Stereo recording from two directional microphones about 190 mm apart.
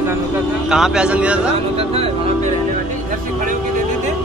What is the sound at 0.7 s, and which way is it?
Speech, 5° right (ahead or behind).